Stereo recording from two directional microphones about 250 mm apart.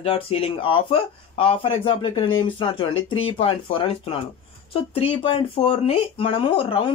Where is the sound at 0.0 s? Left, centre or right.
Left.